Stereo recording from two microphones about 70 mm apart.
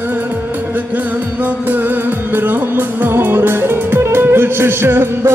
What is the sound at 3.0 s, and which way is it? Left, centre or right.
Music, right.